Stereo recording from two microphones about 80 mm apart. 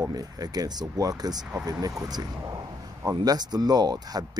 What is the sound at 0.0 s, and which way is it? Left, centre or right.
Speech, right.